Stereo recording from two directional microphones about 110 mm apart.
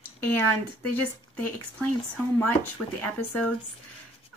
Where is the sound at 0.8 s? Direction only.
15° left (ahead or behind).